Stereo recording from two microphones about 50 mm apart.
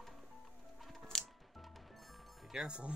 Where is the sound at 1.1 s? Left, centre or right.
Centre.